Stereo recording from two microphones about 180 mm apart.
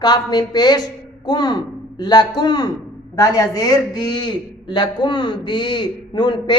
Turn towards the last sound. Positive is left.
turn(degrees=25)  # may be behind; listen again after turning